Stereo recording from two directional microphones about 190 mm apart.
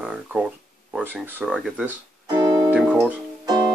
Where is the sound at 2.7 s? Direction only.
5° right (ahead or behind).